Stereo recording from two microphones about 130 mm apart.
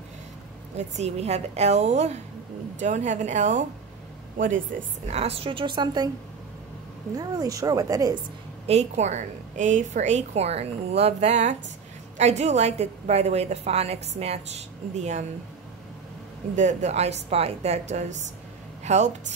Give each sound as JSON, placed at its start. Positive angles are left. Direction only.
{"t": 0.7, "sound": "a woman's voice", "side_deg": -55}
{"t": 4.4, "sound": "speech", "side_deg": -90}
{"t": 5.1, "sound": "a woman's voice", "side_deg": -50}
{"t": 7.2, "sound": "speech", "side_deg": -25}
{"t": 8.6, "sound": "a woman's voice", "side_deg": -60}
{"t": 16.5, "sound": "a woman's voice", "side_deg": -65}